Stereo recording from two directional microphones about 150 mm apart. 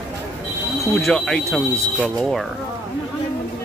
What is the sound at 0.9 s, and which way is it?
Speech, 5° left (ahead or behind).